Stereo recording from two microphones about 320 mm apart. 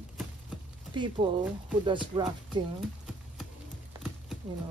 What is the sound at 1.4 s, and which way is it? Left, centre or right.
Speech, centre.